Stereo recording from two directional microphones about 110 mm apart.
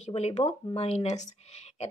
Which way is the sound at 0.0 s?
80° left.